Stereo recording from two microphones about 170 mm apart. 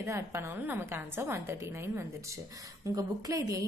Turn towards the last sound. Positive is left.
turn(degrees=-20)  # may be behind; listen again after turning